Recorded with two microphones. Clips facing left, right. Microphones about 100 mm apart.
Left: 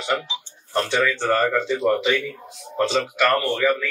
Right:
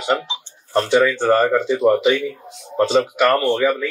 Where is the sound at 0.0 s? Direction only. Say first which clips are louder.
Right 4 dB; 20° right (ahead or behind).